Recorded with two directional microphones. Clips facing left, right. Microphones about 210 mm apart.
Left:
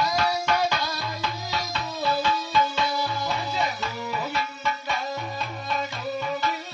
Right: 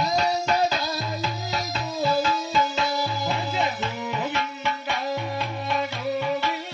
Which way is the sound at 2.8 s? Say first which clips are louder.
Right 1 dB; 20° right (ahead or behind).